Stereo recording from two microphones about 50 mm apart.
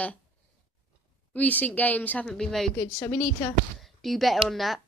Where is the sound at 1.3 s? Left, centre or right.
Left.